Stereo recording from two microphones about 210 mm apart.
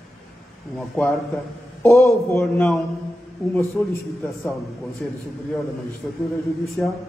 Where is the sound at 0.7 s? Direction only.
Centre (ahead or behind).